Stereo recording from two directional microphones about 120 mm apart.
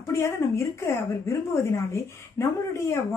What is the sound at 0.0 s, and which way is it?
Speech, 25° left (ahead or behind).